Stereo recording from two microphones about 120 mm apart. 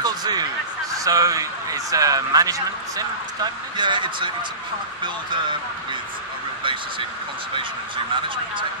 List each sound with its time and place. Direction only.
0.0 s a sound: 35° right (ahead or behind)
0.9 s speech: 30° right (ahead or behind)
3.7 s speech: 40° right (ahead or behind)
6.6 s speech: 45° right (ahead or behind)